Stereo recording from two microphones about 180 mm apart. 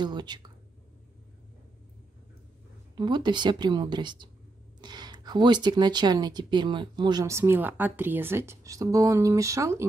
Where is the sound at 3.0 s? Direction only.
25° right (ahead or behind).